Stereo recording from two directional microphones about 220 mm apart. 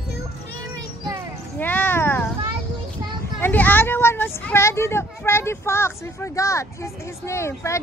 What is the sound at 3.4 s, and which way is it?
A child's voice, 10° left (ahead or behind).